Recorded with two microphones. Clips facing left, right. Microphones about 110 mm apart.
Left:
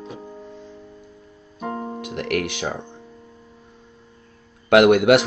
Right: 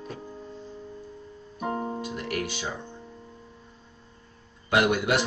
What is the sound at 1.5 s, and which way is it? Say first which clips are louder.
Music: left 1 dB; 10° right (ahead or behind).